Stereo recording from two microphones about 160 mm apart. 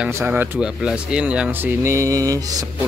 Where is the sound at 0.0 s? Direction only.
10° right (ahead or behind).